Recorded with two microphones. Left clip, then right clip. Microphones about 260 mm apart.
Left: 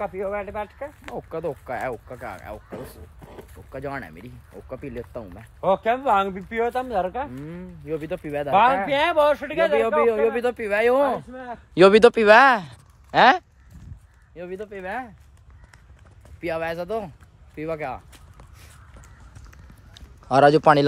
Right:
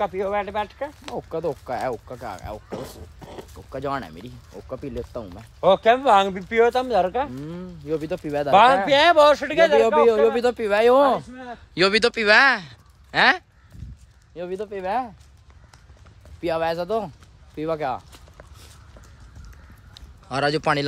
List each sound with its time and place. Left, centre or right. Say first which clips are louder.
0.0 s speech: right 4 dB; right
1.0 s speech: right 2 dB; centre
5.6 s speech: right 5 dB; right
7.3 s speech: right 2 dB; centre
8.5 s speech: right 3 dB; right
10.0 s speech: right 3 dB; centre
11.7 s speech: left 6 dB; centre
14.3 s speech: right 4 dB; centre
16.3 s speech: right 3 dB; centre
19.9 s a sound: left 8 dB; centre